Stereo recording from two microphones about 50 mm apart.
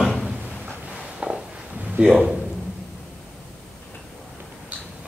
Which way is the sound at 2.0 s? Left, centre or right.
Centre.